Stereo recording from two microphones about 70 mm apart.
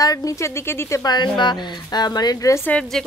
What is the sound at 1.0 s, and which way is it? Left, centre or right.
Speech, left.